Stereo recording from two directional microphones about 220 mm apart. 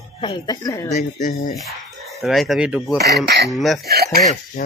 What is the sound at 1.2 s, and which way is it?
Speech, 35° left (ahead or behind).